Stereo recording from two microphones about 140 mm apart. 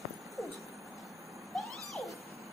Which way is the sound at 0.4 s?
Centre (ahead or behind).